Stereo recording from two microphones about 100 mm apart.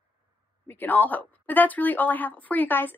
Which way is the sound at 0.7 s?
20° left (ahead or behind).